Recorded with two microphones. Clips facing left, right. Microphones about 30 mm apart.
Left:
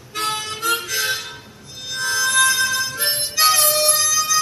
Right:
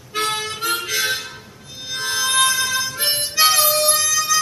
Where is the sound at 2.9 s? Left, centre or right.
Centre.